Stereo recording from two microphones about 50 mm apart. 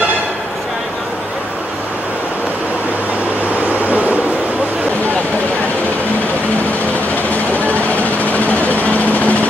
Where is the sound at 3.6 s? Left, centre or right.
Right.